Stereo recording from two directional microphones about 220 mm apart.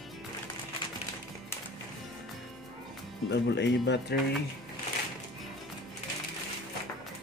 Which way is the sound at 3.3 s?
50° left (ahead or behind).